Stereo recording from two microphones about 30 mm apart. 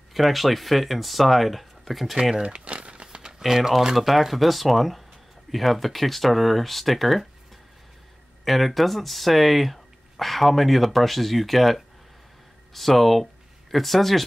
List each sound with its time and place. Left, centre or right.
0.1 s speech: centre
2.4 s crumpling: right
3.0 s crumpling: right
3.4 s speech: centre
8.5 s speech: centre